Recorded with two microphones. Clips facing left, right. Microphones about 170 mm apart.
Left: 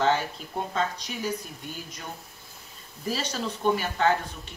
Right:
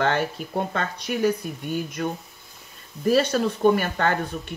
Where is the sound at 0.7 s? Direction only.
60° right (ahead or behind).